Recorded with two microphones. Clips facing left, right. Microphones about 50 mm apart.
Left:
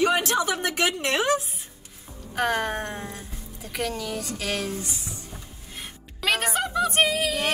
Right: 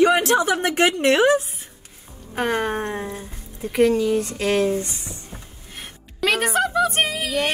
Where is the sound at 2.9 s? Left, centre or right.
Right.